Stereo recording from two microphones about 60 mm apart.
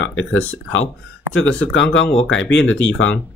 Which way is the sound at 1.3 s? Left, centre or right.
Centre.